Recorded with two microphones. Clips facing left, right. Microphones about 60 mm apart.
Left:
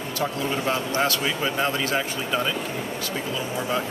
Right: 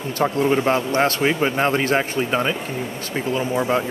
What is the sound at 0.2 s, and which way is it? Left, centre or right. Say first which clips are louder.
Speech: right 8 dB; right.